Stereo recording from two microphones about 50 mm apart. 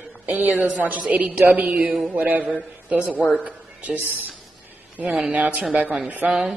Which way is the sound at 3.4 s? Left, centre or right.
Right.